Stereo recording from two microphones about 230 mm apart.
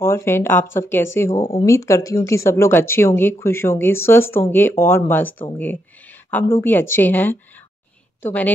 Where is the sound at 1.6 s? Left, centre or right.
Centre.